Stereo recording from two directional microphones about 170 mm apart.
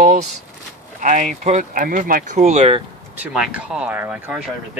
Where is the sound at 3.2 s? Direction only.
5° right (ahead or behind).